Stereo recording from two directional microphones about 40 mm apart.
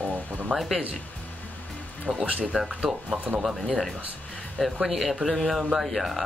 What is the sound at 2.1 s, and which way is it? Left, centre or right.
Speech, right.